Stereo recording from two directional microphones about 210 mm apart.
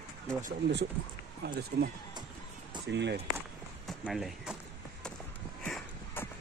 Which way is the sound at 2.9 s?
55° right (ahead or behind).